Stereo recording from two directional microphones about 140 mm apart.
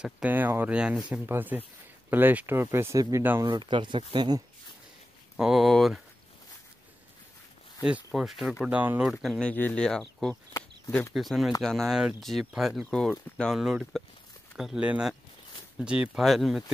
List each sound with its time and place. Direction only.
0.0 s speech: 10° right (ahead or behind)
3.4 s speech: 30° right (ahead or behind)
5.4 s speech: centre (ahead or behind)
7.8 s speech: 5° right (ahead or behind)